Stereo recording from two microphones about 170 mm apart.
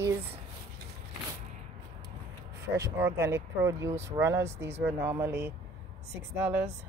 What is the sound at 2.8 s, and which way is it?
Speech, 15° right (ahead or behind).